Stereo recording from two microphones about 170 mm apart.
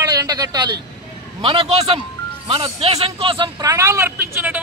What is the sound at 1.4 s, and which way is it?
A man's voice, 35° right (ahead or behind).